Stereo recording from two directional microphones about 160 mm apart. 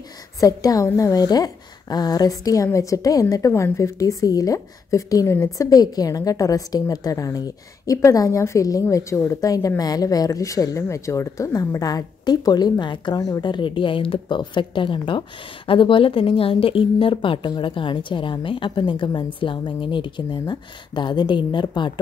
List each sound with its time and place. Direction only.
0.4 s a woman's voice: 20° left (ahead or behind)